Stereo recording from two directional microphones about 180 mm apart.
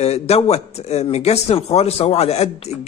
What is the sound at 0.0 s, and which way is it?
Speech, 35° left (ahead or behind).